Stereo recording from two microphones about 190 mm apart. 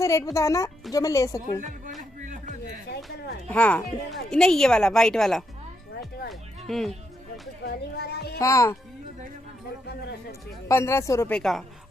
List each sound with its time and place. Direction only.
0.0 s speech: 15° left (ahead or behind)
2.2 s a sound: 40° right (ahead or behind)
3.4 s a woman's voice: 5° left (ahead or behind)
6.7 s a woman's voice: centre (ahead or behind)
7.6 s a sound: 60° left (ahead or behind)
8.4 s speech: 15° left (ahead or behind)
10.7 s speech: 15° left (ahead or behind)